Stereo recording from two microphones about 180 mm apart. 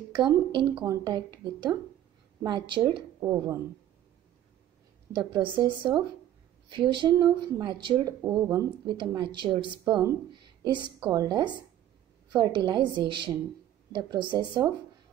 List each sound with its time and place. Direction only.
0.1 s speech: 25° right (ahead or behind)
5.1 s speech: 25° right (ahead or behind)
6.7 s speech: 25° right (ahead or behind)